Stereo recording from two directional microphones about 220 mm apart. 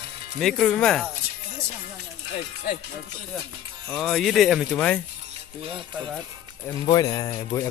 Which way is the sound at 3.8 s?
Centre (ahead or behind).